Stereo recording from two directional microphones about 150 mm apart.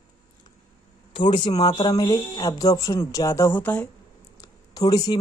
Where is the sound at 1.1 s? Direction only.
35° left (ahead or behind); by 3.9 s 10° left (ahead or behind).